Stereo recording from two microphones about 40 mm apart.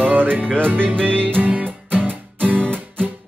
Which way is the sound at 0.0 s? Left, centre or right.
Right.